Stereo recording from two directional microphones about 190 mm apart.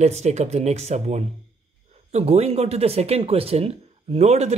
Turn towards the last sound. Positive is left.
turn(degrees=-35)  # may be behind; listen again after turning